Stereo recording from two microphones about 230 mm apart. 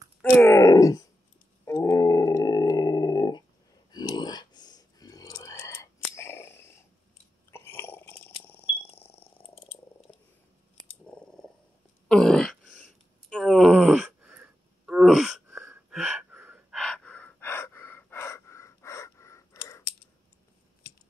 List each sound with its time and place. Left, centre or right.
0.2 s groan: centre
1.7 s roar: centre
3.9 s a sound: centre
8.8 s frog: left
10.1 s purr: centre
11.1 s a sound: centre
12.1 s wail: centre